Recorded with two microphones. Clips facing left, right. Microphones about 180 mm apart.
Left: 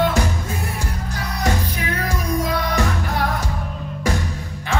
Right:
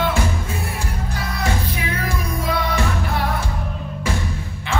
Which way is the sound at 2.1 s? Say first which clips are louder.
Left 4 dB; 40° left (ahead or behind).